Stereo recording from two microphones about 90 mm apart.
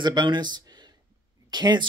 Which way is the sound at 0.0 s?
55° right (ahead or behind).